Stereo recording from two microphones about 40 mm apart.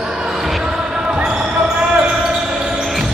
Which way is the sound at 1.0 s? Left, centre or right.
Right.